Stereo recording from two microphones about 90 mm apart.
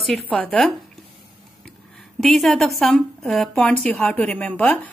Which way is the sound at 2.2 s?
Centre (ahead or behind).